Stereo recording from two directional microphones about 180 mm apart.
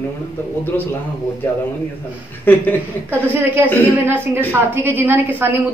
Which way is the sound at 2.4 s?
10° left (ahead or behind).